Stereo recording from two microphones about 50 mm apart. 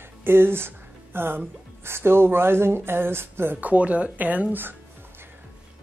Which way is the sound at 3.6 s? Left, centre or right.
Right.